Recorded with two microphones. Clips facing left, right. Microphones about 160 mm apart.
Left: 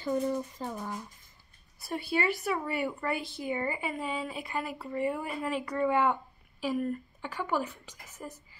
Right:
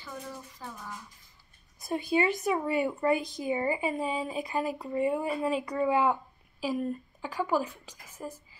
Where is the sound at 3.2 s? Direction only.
40° right (ahead or behind).